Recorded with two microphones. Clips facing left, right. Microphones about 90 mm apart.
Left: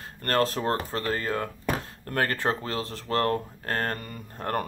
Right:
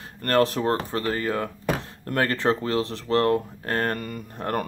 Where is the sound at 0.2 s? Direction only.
20° right (ahead or behind).